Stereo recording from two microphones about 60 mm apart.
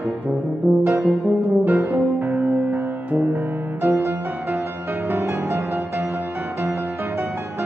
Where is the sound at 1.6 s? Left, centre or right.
Right.